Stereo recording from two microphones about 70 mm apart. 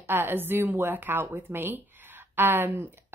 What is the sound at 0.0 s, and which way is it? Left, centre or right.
A woman's voice, right.